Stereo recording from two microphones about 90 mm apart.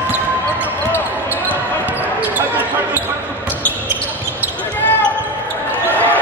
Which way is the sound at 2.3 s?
20° right (ahead or behind).